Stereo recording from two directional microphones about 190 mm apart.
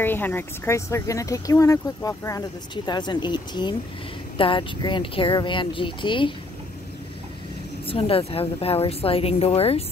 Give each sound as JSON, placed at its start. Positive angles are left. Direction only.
{"t": 0.0, "sound": "speech", "side_deg": 10}
{"t": 7.8, "sound": "a woman's voice", "side_deg": 30}